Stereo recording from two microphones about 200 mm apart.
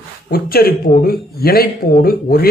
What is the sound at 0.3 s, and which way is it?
Speech, 50° left (ahead or behind).